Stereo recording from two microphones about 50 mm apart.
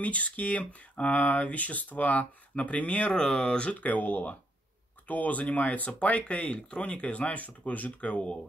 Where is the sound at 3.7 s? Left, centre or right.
Left.